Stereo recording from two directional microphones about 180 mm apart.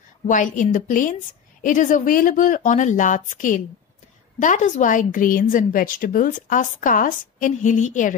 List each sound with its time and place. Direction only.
0.3 s a woman's voice: 45° left (ahead or behind)